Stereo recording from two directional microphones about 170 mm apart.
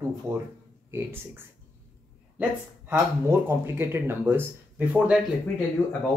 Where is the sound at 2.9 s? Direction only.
15° right (ahead or behind).